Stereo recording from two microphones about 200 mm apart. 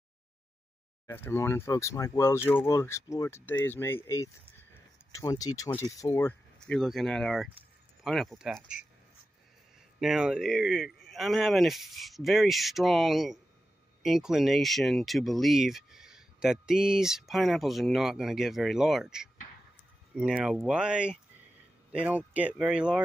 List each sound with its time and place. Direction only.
1.0 s speech: 10° left (ahead or behind)
9.9 s speech: 5° right (ahead or behind)